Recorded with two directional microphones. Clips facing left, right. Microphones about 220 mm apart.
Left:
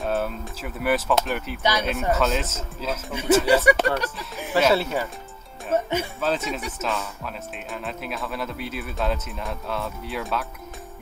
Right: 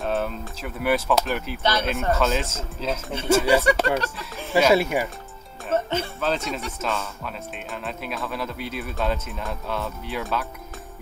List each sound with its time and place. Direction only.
0.0 s speech: centre (ahead or behind)
1.6 s speech: 15° left (ahead or behind)
1.9 s speech: centre (ahead or behind)
4.6 s speech: 10° right (ahead or behind)
5.7 s speech: 15° left (ahead or behind)
6.2 s speech: 5° left (ahead or behind)